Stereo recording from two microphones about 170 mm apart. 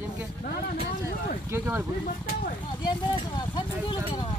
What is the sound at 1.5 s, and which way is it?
Speech, 15° right (ahead or behind).